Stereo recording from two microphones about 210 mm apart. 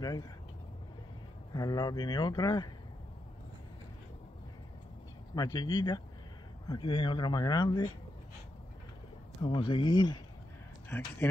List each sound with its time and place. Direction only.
0.0 s speech: 20° left (ahead or behind)
1.5 s speech: 20° left (ahead or behind)
5.3 s speech: 20° left (ahead or behind)
9.4 s speech: 25° left (ahead or behind)
10.9 s speech: 10° left (ahead or behind)